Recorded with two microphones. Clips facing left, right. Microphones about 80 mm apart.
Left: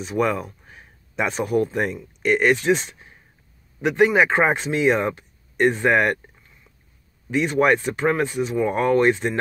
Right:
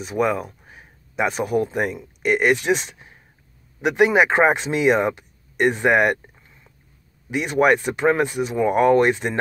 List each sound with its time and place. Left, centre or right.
0.0 s speech: centre
3.8 s speech: centre